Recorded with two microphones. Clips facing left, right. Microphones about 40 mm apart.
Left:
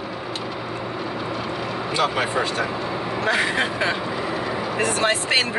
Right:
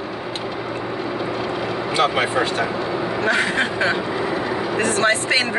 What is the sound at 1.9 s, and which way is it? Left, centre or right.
Speech, right.